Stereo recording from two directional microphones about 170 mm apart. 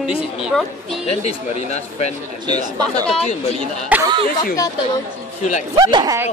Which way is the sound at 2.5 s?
25° right (ahead or behind).